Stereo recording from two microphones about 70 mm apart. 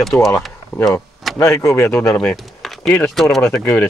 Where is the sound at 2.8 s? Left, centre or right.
Left.